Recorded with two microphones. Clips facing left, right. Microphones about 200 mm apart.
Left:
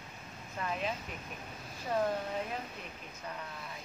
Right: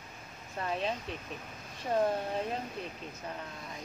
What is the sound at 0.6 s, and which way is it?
Speech, 30° right (ahead or behind).